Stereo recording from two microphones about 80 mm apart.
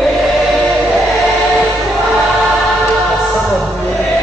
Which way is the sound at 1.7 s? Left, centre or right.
Centre.